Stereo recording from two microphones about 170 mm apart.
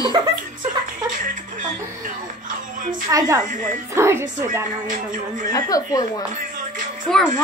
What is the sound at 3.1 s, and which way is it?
Speech, 20° right (ahead or behind).